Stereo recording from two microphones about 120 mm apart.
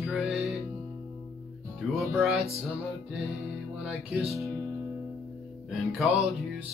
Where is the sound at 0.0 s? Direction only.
Centre (ahead or behind).